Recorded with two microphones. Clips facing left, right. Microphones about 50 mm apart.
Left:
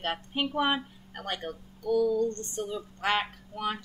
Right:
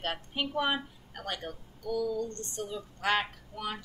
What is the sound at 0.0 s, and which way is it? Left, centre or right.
A woman's voice, centre.